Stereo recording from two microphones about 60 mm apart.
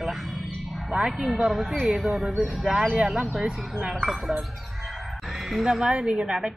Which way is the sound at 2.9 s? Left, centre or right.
Centre.